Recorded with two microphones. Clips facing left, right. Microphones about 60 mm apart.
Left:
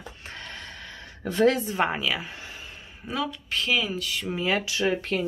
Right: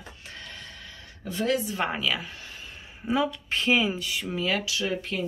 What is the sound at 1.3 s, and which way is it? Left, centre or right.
Speech, left.